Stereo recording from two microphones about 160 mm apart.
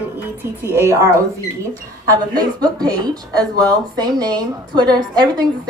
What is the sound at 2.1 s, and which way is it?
A woman's voice, 25° right (ahead or behind).